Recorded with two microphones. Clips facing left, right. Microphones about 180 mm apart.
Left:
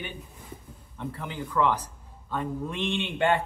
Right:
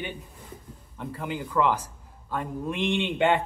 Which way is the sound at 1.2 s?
15° right (ahead or behind).